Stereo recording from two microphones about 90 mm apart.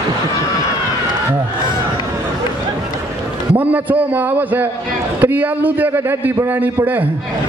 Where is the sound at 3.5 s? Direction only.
20° right (ahead or behind).